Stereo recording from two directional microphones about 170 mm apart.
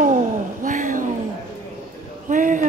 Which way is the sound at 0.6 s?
50° right (ahead or behind).